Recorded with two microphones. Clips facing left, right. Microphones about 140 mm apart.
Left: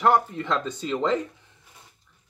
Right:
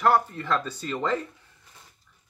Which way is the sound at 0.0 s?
20° left (ahead or behind).